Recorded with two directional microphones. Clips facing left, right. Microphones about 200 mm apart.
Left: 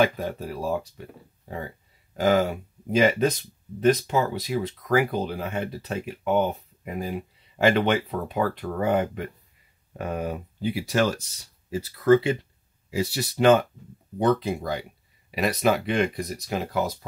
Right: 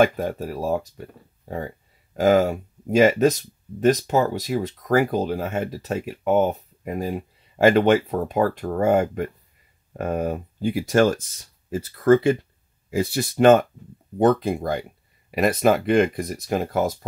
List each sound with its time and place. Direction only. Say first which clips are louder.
0.0 s speech: right 4 dB; 50° right (ahead or behind)
2.1 s speech: right 4 dB; 45° right (ahead or behind)